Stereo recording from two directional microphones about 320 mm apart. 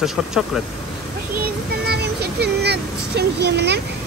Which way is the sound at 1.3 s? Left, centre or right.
Right.